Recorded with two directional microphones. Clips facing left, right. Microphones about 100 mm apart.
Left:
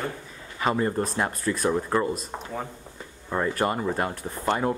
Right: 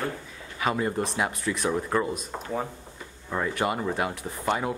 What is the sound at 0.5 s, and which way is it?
Speech, 5° right (ahead or behind).